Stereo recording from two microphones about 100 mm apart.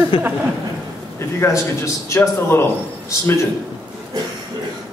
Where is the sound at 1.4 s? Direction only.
30° left (ahead or behind).